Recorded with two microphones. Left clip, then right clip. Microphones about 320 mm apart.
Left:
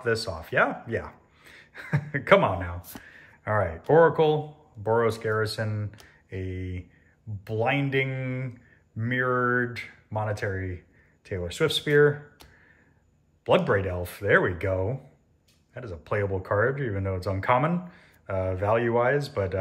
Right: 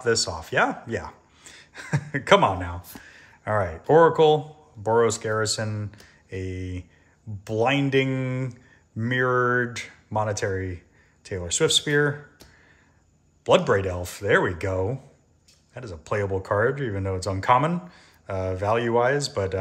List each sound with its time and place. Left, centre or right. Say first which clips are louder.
0.0 s speech: right 4 dB; centre